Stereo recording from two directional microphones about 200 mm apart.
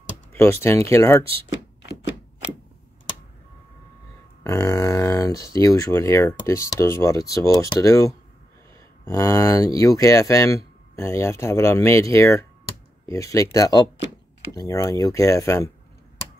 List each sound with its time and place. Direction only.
0.3 s speech: 10° left (ahead or behind)
1.2 s a sound: 25° right (ahead or behind)
4.4 s speech: 15° left (ahead or behind)